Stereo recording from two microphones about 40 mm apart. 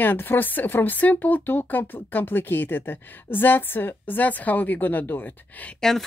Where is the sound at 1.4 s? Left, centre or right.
Left.